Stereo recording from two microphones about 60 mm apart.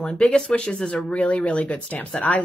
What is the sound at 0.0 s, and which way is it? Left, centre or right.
Speech, centre.